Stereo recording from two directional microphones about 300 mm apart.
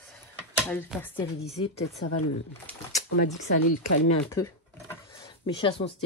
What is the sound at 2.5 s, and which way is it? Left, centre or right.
Speech, centre.